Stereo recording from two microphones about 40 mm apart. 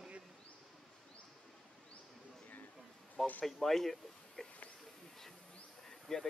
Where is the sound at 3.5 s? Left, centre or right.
Centre.